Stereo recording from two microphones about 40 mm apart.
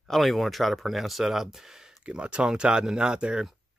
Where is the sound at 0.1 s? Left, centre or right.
Centre.